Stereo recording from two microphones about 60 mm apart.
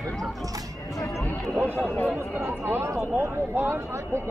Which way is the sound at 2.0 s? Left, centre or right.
Right.